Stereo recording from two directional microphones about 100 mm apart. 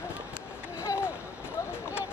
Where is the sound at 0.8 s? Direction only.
30° left (ahead or behind).